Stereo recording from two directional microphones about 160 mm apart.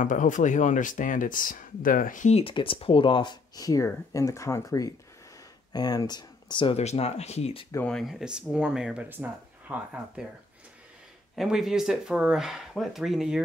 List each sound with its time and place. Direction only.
0.0 s speech: 55° left (ahead or behind)
7.7 s speech: 5° left (ahead or behind); by 10.2 s 10° right (ahead or behind)
11.3 s speech: centre (ahead or behind)